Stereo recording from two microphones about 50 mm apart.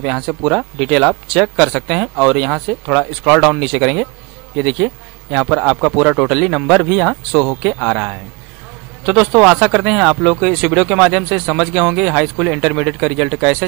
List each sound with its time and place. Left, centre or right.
0.0 s a man's voice: centre